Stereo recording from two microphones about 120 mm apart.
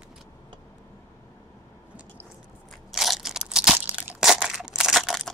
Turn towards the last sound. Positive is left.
turn(degrees=0)  # may be behind; listen again after turning